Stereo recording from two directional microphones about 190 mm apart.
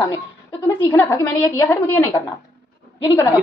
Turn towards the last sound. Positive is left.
turn(degrees=20)  # may be behind; listen again after turning